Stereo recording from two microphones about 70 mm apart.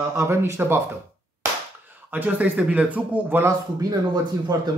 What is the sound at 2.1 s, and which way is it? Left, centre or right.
Speech, right.